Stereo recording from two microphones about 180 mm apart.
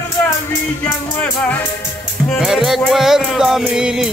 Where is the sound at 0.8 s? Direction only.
10° left (ahead or behind).